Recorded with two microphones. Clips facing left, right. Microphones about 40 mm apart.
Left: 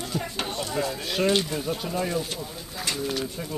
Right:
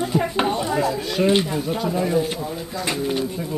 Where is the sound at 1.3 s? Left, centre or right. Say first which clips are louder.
Right 5 dB; centre.